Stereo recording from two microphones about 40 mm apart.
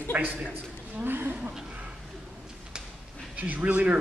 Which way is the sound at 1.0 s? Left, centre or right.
Right.